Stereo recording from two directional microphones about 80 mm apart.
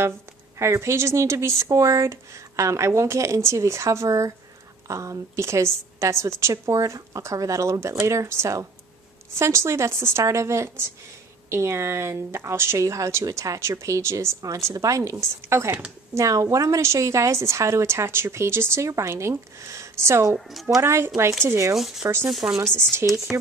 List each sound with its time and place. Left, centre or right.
0.6 s a woman's voice: right
20.3 s speech: centre
20.8 s a woman's voice: right
21.7 s speech: centre
22.0 s speech: right
22.3 s speech: centre
23.0 s a woman's voice: right